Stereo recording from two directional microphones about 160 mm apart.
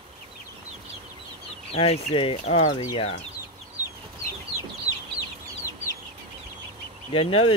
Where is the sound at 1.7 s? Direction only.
40° left (ahead or behind).